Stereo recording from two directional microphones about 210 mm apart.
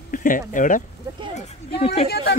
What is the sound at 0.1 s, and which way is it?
Speech, 40° left (ahead or behind).